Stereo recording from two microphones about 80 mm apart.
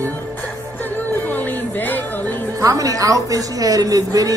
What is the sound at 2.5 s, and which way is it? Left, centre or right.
Speech, right.